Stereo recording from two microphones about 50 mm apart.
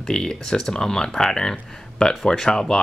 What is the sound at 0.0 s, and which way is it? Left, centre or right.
Speech, centre.